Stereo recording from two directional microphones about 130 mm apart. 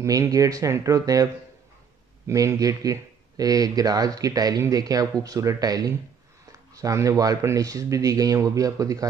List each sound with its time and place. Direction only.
0.0 s speech: 25° right (ahead or behind)